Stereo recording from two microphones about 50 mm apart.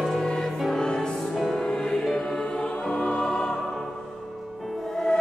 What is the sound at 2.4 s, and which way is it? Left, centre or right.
Choir, left.